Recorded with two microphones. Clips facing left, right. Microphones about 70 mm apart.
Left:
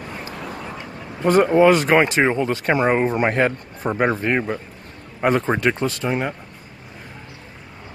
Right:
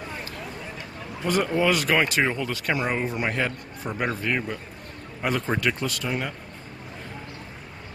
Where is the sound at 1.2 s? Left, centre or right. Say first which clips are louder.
Left 9 dB; left.